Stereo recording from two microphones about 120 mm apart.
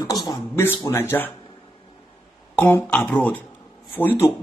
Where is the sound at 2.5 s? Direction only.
15° left (ahead or behind).